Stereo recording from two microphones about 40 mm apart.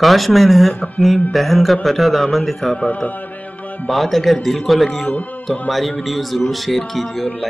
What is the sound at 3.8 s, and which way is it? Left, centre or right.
Speech, centre.